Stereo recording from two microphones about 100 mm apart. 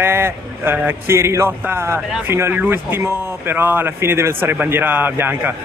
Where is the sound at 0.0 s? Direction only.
25° right (ahead or behind).